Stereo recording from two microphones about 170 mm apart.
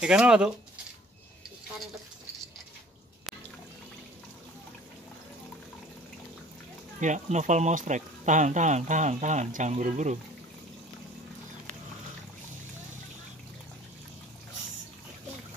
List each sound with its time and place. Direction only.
0.0 s speech: 5° right (ahead or behind)
7.0 s speech: 45° right (ahead or behind)